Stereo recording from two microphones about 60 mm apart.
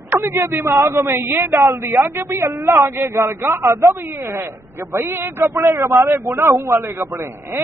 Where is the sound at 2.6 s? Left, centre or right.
Right.